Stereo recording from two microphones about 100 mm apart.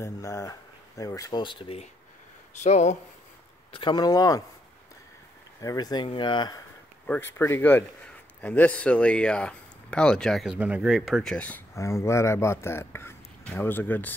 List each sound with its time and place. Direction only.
0.0 s speech: 35° left (ahead or behind)
1.4 s speech: 55° left (ahead or behind)
3.9 s speech: 40° left (ahead or behind)
5.6 s speech: 40° left (ahead or behind)
6.0 s speech: 55° left (ahead or behind)
7.1 s a man's voice: 20° left (ahead or behind); by 10.4 s 5° left (ahead or behind)
10.4 s speech: 10° right (ahead or behind)
10.9 s speech: centre (ahead or behind)
11.3 s a man's voice: 15° left (ahead or behind)
11.7 s speech: 30° left (ahead or behind)